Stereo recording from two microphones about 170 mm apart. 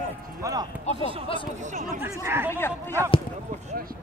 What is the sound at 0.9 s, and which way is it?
Speech, 30° right (ahead or behind).